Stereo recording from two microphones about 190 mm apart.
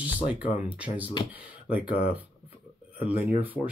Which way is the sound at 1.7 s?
30° left (ahead or behind).